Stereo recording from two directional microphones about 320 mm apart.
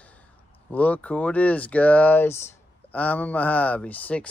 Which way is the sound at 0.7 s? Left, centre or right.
Centre.